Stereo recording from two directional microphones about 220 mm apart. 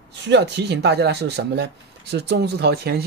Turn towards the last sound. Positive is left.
turn(degrees=-45)  # may be behind; listen again after turning